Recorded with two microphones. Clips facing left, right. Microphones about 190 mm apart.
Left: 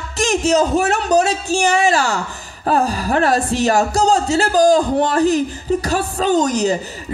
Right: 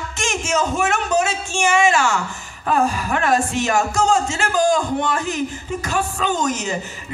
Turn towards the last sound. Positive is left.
turn(degrees=35)  # may be behind; listen again after turning